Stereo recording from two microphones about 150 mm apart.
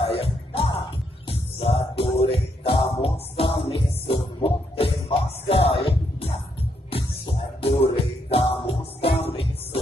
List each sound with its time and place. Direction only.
0.0 s music: 40° left (ahead or behind)